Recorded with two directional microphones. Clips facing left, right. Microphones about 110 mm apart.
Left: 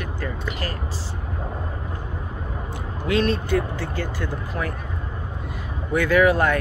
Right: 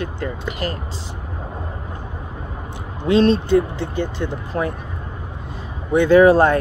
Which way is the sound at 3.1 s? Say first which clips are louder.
Right 7 dB; 25° right (ahead or behind).